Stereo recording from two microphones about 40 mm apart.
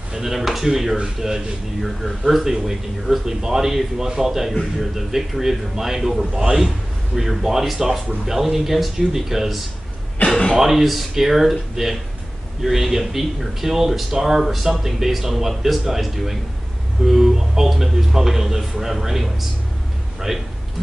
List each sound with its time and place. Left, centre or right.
0.1 s speech: centre
10.2 s a sound: left
10.6 s speech: centre